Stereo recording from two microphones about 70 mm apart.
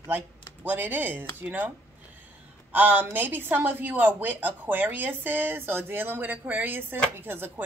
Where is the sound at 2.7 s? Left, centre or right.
Right.